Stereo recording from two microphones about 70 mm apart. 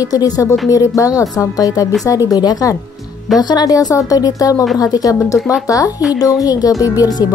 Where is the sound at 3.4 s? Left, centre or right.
Left.